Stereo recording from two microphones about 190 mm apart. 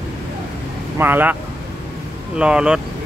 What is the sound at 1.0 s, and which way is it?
Speech, 10° right (ahead or behind).